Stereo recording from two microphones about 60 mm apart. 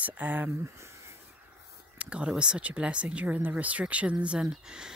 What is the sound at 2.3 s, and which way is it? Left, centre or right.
Speech, centre.